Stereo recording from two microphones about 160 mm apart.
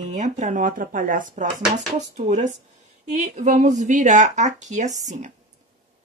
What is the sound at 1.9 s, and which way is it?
Speech, 45° right (ahead or behind).